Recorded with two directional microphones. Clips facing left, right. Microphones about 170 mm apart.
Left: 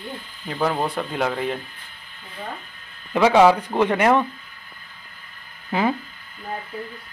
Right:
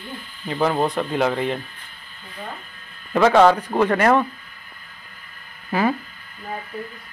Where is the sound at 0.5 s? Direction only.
Centre (ahead or behind).